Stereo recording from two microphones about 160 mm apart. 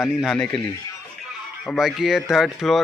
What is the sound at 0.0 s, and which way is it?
Speech, centre (ahead or behind).